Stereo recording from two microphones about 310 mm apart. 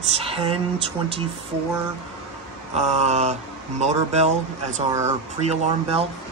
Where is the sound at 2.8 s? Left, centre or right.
Right.